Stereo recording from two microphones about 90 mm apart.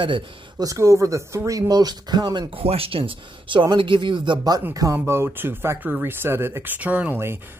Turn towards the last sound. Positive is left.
turn(degrees=-15)  # may be behind; listen again after turning